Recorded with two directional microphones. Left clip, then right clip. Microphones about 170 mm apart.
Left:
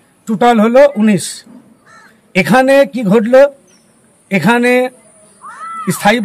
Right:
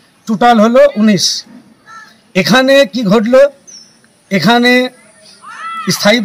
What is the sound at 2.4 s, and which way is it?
Speech, 5° left (ahead or behind).